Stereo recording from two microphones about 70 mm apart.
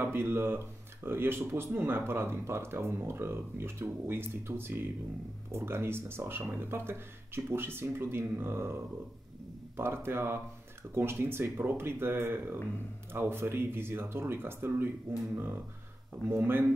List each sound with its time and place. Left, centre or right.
0.0 s speech: right